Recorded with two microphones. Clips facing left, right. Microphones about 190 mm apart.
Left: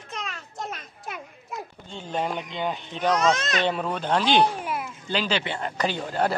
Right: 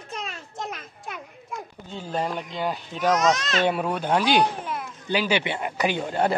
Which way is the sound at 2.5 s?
5° right (ahead or behind).